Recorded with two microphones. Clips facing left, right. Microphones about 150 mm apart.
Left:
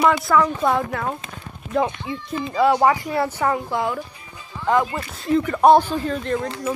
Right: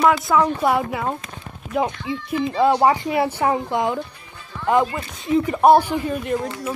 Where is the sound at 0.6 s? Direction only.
10° right (ahead or behind).